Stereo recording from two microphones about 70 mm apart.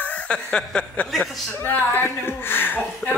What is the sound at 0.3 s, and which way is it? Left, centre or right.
Speech, centre.